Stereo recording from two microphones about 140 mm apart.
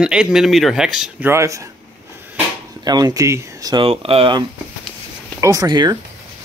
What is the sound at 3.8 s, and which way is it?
Speech, 45° right (ahead or behind).